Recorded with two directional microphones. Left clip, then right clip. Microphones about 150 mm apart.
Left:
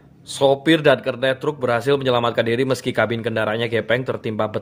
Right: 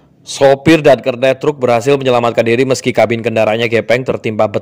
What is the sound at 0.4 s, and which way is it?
A man's voice, 40° right (ahead or behind).